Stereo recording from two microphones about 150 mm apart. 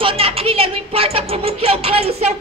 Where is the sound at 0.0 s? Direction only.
40° right (ahead or behind).